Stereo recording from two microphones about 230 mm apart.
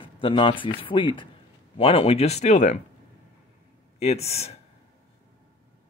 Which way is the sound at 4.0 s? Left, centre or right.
Left.